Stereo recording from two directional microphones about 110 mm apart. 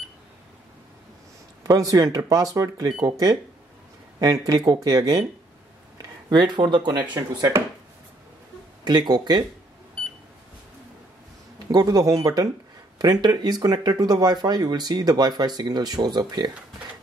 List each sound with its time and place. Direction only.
1.6 s speech: 35° right (ahead or behind)
6.3 s speech: 45° right (ahead or behind)
8.8 s speech: 40° right (ahead or behind)
11.7 s speech: 35° right (ahead or behind)